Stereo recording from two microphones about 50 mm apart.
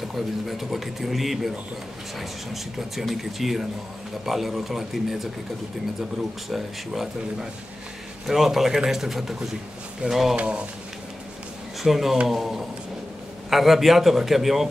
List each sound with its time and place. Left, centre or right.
0.1 s speech: centre
6.5 s speech: centre
8.3 s speech: centre
10.3 s speech: right
11.8 s speech: centre